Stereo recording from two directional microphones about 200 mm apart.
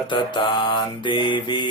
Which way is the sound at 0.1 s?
25° left (ahead or behind).